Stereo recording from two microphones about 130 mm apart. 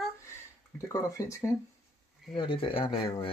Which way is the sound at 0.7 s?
25° left (ahead or behind).